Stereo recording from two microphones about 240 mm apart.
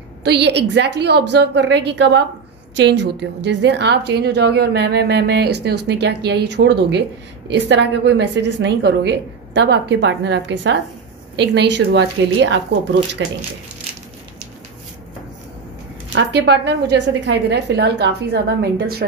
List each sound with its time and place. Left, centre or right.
0.2 s a woman's voice: right
16.2 s a woman's voice: right